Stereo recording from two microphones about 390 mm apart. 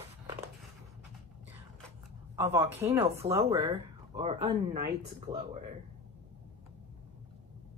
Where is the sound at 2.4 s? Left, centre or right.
Centre.